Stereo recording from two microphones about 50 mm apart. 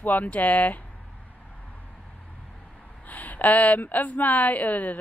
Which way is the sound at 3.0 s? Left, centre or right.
Left.